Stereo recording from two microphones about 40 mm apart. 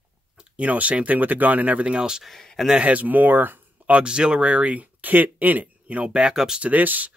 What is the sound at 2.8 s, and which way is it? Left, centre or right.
Speech, right.